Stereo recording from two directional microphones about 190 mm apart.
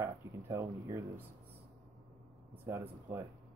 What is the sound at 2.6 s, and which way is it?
Speech, 10° right (ahead or behind).